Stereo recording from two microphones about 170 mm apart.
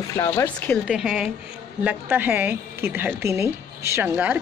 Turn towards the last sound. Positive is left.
turn(degrees=-10)  # may be behind; listen again after turning